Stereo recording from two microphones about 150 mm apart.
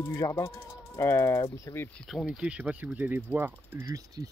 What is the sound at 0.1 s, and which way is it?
Speech, 25° left (ahead or behind).